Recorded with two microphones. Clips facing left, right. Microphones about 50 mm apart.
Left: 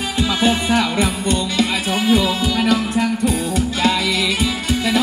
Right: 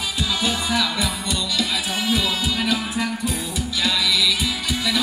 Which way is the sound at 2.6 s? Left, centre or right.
Left.